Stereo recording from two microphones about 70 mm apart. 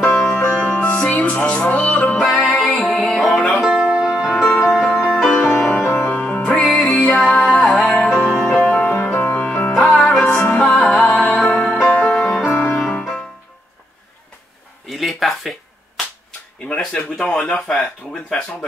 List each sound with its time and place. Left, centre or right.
0.2 s music: centre
2.1 s music: centre
4.3 s music: centre
5.9 s music: left
6.6 s music: centre
6.9 s music: left
7.2 s music: centre
8.9 s music: left
9.8 s music: centre
14.9 s a sound: centre
16.6 s speech: centre